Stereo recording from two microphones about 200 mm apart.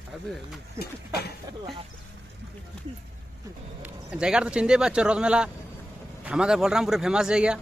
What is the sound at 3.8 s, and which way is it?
Speech, 5° right (ahead or behind).